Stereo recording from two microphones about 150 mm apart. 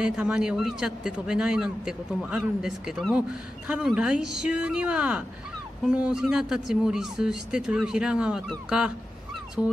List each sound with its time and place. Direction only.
0.0 s a man's voice: 5° right (ahead or behind)
9.6 s music: 10° right (ahead or behind)